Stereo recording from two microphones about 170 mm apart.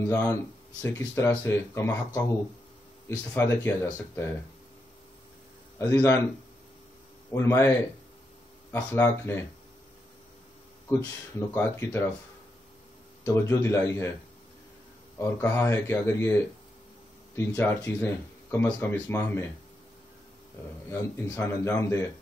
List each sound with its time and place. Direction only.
0.0 s speech: 20° left (ahead or behind)
3.1 s speech: 15° left (ahead or behind)
5.8 s speech: 15° left (ahead or behind)
7.3 s speech: 15° left (ahead or behind)
8.9 s speech: 15° left (ahead or behind)
10.9 s speech: 15° left (ahead or behind)
13.2 s speech: 15° left (ahead or behind)
15.1 s speech: 15° left (ahead or behind)
20.9 s speech: 15° left (ahead or behind)